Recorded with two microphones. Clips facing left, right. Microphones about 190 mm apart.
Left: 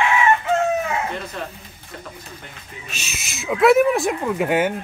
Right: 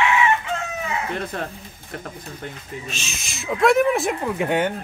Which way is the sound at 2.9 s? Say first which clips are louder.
Right 1 dB; 5° left (ahead or behind).